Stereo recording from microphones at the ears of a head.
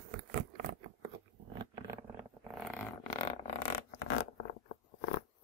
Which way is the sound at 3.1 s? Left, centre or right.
Left.